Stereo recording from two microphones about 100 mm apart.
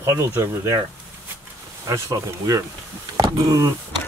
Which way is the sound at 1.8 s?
30° right (ahead or behind).